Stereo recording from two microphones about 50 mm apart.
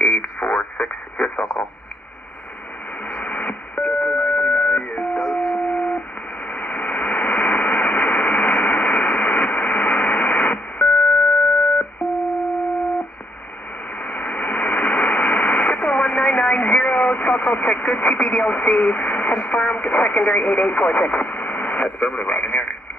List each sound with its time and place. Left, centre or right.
0.0 s radio: left
3.1 s radio: left
5.3 s a sound: left
6.5 s radio: left
14.0 s radio: left